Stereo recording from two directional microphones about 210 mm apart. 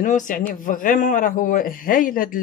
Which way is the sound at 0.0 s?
40° left (ahead or behind).